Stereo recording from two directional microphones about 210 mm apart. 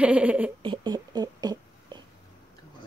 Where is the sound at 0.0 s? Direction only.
5° right (ahead or behind).